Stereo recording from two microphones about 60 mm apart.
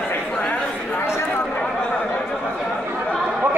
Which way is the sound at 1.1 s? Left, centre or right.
Left.